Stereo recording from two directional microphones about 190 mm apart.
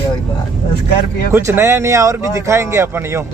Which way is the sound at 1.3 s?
15° right (ahead or behind).